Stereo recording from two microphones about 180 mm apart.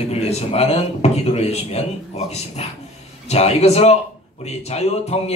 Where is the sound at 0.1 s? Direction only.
35° left (ahead or behind).